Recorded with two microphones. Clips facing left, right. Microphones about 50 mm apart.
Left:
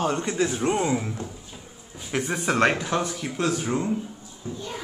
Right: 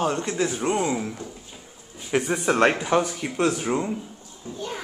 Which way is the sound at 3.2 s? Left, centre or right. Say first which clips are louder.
Right 2 dB; centre.